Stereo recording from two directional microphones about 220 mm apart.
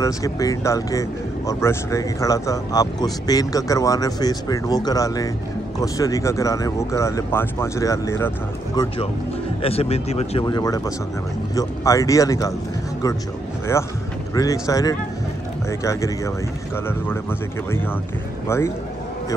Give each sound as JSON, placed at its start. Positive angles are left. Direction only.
{"t": 0.0, "sound": "speech", "side_deg": 15}
{"t": 8.7, "sound": "speech", "side_deg": 25}
{"t": 10.4, "sound": "speech", "side_deg": 15}
{"t": 13.7, "sound": "speech", "side_deg": 10}